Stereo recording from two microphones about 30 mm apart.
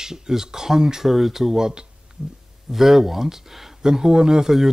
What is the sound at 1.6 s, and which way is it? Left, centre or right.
Speech, right.